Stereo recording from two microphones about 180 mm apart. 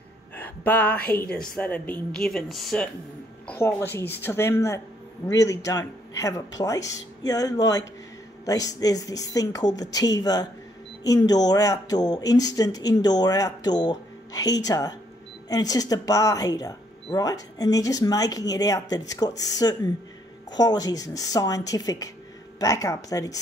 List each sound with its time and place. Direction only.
0.4 s a sound: 10° left (ahead or behind)
1.0 s a woman's voice: 10° left (ahead or behind)
3.4 s speech: 10° left (ahead or behind)